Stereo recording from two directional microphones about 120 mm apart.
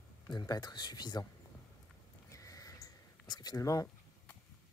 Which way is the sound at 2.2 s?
30° left (ahead or behind).